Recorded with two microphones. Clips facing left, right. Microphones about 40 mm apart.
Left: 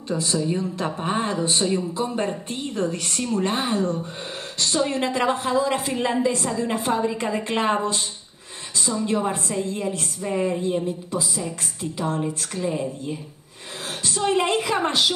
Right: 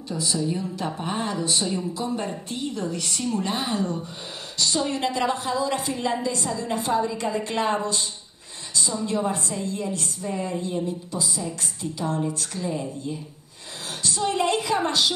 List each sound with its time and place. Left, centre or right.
0.1 s a woman's voice: left
9.0 s a woman's voice: left
14.0 s a woman's voice: left